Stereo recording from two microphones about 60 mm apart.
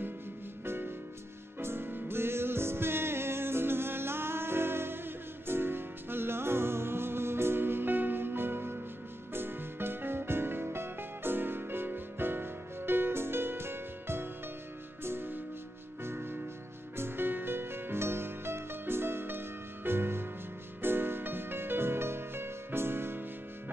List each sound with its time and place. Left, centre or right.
0.7 s music: right